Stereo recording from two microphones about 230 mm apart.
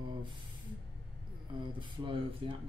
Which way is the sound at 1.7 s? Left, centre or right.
Right.